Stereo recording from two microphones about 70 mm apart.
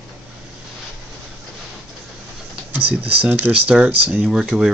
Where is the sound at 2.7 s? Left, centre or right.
Right.